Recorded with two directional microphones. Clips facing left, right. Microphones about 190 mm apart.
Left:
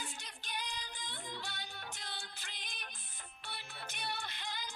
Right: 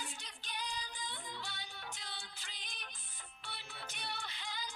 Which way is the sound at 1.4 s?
50° left (ahead or behind).